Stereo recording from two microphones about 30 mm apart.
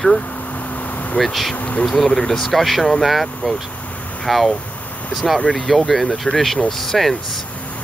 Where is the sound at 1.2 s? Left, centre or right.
Centre.